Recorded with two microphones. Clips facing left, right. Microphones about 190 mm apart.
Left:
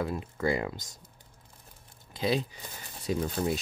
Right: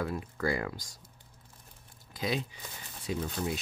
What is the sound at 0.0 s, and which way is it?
Speech, 20° left (ahead or behind).